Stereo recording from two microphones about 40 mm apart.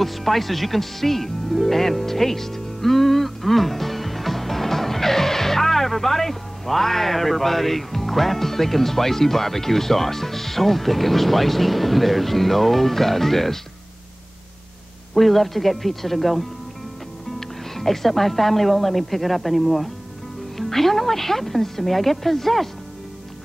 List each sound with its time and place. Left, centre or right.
0.0 s speech: centre
15.1 s speech: centre